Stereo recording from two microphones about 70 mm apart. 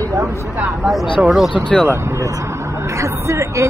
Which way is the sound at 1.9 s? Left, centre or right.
Right.